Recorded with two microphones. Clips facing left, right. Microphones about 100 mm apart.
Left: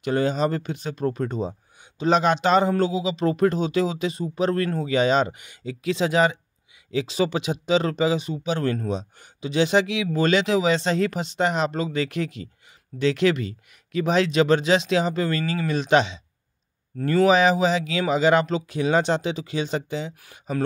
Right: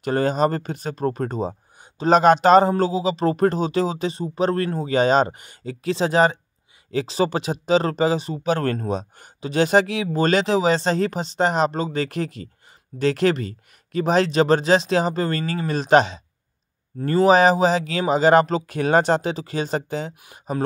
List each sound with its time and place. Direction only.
0.0 s speech: 40° right (ahead or behind)
8.5 s speech: 50° right (ahead or behind)